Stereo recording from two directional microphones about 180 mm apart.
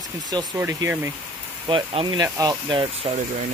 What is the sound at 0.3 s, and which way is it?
Speech, 20° right (ahead or behind).